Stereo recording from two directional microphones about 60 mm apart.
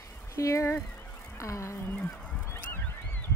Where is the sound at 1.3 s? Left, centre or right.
Left.